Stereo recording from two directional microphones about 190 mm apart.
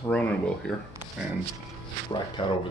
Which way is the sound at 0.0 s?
5° left (ahead or behind).